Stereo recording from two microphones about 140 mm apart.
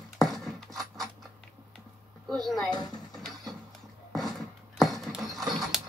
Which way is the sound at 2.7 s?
30° left (ahead or behind).